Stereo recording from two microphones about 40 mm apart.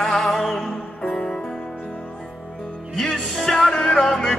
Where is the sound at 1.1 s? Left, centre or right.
Centre.